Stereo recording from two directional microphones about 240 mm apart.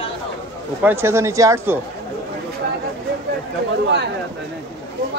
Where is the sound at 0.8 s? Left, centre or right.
Centre.